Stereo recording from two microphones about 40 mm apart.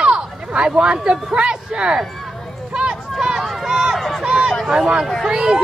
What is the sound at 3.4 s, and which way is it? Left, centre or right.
Run, centre.